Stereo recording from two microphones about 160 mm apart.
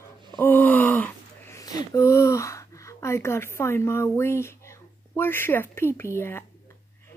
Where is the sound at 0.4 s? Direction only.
10° left (ahead or behind).